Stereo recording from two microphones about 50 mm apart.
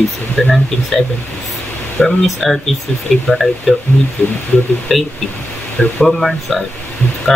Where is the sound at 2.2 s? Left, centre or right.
Centre.